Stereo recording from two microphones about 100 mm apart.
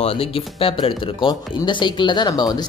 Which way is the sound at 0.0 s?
75° left (ahead or behind).